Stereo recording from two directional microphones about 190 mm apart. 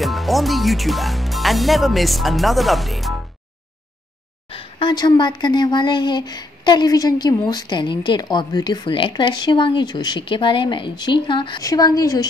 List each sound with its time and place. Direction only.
0.0 s speech: centre (ahead or behind)
4.5 s speech: 25° left (ahead or behind)